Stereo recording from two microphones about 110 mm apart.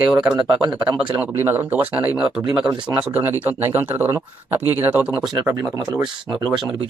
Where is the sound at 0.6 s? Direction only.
40° right (ahead or behind).